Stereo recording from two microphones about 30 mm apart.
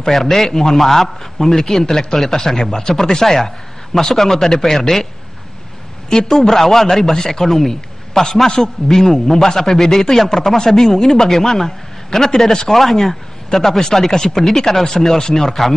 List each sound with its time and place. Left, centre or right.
0.1 s a man's voice: centre
6.0 s a woman's voice: left
6.3 s a man's voice: centre